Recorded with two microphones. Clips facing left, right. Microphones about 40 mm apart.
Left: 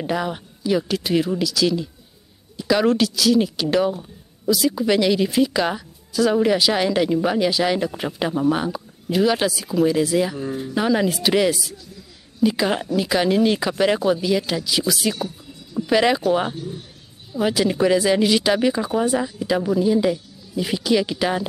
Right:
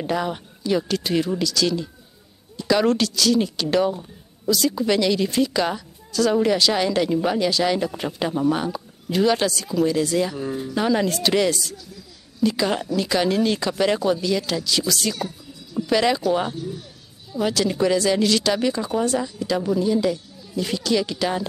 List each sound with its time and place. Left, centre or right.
0.0 s speech: centre